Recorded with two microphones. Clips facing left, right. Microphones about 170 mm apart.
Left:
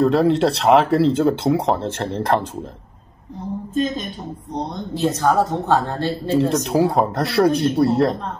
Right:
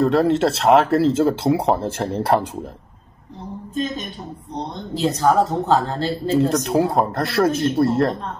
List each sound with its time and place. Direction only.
0.0 s speech: centre (ahead or behind)
3.7 s a woman's voice: 40° left (ahead or behind)
5.3 s speech: 10° right (ahead or behind)